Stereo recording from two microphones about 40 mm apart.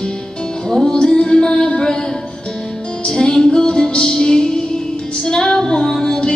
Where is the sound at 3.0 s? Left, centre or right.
Centre.